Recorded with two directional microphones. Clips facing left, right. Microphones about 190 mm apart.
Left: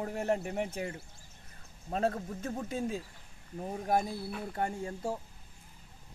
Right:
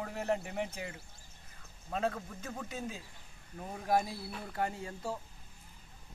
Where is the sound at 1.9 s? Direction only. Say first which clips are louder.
Left 3 dB; 35° left (ahead or behind).